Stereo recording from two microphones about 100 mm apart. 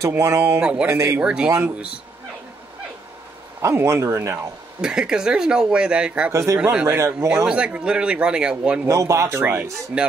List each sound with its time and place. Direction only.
0.2 s speech: 30° right (ahead or behind)
0.6 s speech: 10° right (ahead or behind)
0.9 s speech: 30° right (ahead or behind)
1.2 s speech: 10° right (ahead or behind)
3.6 s speech: 30° right (ahead or behind)
4.8 s speech: 5° right (ahead or behind)
6.3 s speech: 30° right (ahead or behind)
6.7 s speech: 10° right (ahead or behind)
7.0 s speech: 30° right (ahead or behind)
7.4 s speech: 10° right (ahead or behind)
8.8 s speech: 30° right (ahead or behind)